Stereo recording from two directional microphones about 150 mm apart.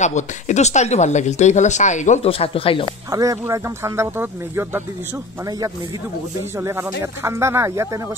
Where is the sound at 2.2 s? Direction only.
40° left (ahead or behind).